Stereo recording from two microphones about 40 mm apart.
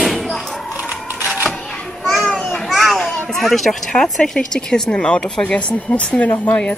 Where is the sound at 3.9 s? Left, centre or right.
Centre; by 6.8 s left.